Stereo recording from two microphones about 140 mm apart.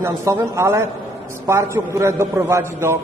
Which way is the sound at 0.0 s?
20° right (ahead or behind).